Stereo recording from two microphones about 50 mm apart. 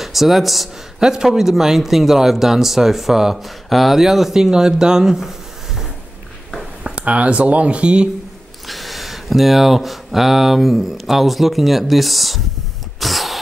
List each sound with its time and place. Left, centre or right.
0.0 s speech: centre
0.9 s a man's voice: centre
6.8 s speech: right
8.6 s speech: centre
13.0 s a sound: centre